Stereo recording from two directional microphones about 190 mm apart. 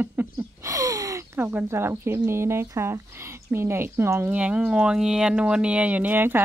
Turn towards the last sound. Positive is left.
turn(degrees=-10)  # may be behind; listen again after turning